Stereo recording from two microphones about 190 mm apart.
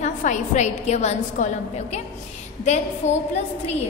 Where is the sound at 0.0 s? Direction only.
40° left (ahead or behind).